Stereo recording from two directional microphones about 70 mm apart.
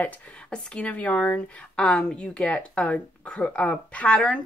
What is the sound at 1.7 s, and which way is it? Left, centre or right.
Speech, centre.